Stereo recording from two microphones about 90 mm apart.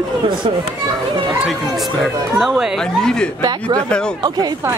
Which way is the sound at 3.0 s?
5° left (ahead or behind).